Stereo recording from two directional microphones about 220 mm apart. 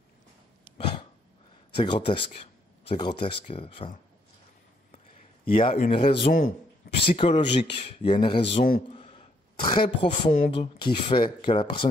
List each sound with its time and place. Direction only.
1.8 s speech: 20° left (ahead or behind)
5.5 s speech: 25° left (ahead or behind)
6.2 s speech: 35° left (ahead or behind)
7.1 s speech: 25° left (ahead or behind)